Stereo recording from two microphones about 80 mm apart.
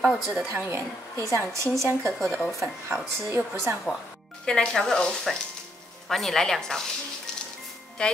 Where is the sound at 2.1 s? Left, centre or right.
Centre.